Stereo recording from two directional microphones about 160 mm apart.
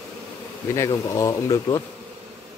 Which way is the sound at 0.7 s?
20° left (ahead or behind).